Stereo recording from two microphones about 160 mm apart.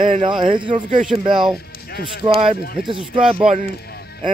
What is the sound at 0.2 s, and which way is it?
Speech, 30° right (ahead or behind).